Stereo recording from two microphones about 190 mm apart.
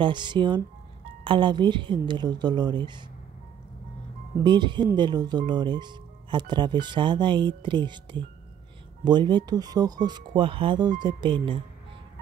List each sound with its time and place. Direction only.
0.0 s speech: 25° right (ahead or behind)
4.4 s speech: 25° right (ahead or behind)